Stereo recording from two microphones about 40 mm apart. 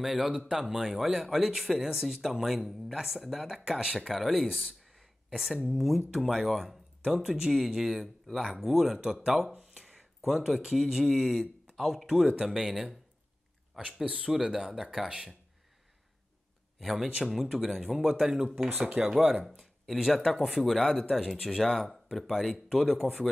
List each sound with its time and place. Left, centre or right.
0.0 s speech: centre
4.5 s speech: centre
8.6 s speech: centre
14.0 s speech: right; by 15.0 s centre
16.8 s speech: centre
19.3 s speech: centre